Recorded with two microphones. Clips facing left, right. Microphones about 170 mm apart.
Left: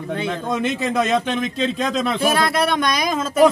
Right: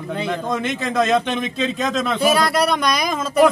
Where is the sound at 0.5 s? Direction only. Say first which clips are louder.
Left 1 dB; 10° left (ahead or behind).